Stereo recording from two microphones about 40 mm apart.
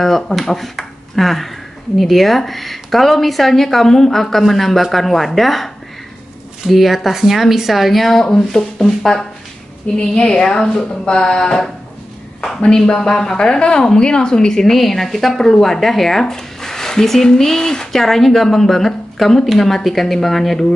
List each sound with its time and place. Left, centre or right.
0.0 s speech: centre
6.7 s speech: centre
9.9 s a woman's voice: left
14.8 s speech: centre